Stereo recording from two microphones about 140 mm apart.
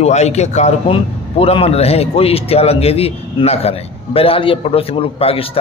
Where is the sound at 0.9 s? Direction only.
40° left (ahead or behind).